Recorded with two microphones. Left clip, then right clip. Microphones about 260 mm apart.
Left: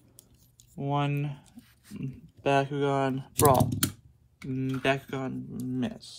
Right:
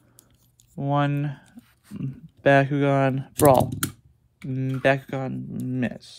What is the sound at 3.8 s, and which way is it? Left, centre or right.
Computer keyboard, centre.